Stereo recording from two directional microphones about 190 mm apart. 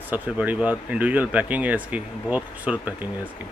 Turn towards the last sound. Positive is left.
turn(degrees=-10)  # may be behind; listen again after turning